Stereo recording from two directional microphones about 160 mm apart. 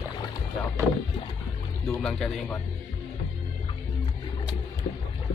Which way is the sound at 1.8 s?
5° left (ahead or behind).